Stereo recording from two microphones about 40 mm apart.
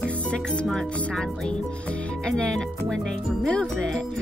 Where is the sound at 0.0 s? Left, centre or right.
Left.